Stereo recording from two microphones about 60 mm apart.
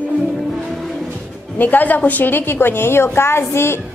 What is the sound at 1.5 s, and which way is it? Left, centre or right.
A woman's voice, left.